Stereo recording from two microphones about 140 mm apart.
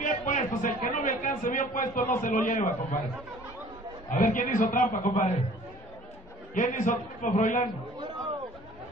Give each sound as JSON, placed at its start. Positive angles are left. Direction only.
{"t": 0.0, "sound": "a man's voice", "side_deg": 65}
{"t": 4.1, "sound": "a man's voice", "side_deg": 70}
{"t": 6.5, "sound": "a man's voice", "side_deg": 70}